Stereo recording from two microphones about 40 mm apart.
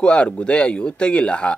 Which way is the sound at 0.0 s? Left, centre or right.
Left.